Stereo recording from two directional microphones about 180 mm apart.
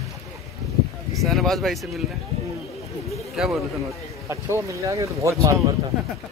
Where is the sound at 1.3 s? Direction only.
Centre (ahead or behind).